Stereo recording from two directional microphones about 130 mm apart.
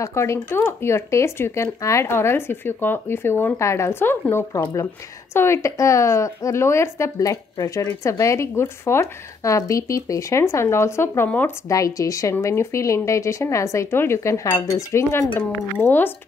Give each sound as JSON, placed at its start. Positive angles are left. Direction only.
{"t": 0.0, "sound": "a woman's voice", "side_deg": 20}
{"t": 11.7, "sound": "a woman's voice", "side_deg": 25}